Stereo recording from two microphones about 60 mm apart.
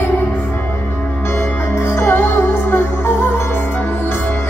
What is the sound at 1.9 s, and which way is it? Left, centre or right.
Music, left.